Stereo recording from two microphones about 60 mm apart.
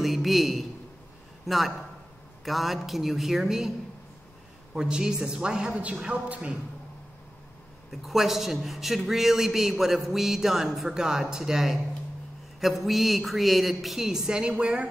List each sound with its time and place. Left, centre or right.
0.0 s a sound: centre
1.4 s a man's voice: centre
4.7 s a woman's voice: centre
7.9 s a man's voice: centre